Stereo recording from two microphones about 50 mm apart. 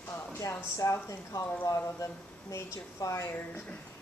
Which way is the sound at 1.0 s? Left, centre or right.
Left.